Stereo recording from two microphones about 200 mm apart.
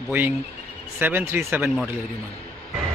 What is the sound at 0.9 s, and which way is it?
Speech, 10° right (ahead or behind).